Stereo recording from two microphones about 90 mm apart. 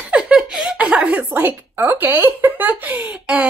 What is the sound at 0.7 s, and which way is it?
Speech, 15° right (ahead or behind).